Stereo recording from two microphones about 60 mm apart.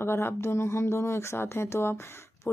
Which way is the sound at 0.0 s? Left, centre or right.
Left.